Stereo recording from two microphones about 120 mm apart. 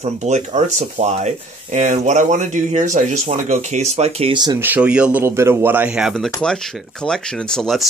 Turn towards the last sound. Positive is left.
turn(degrees=0)  # may be behind; listen again after turning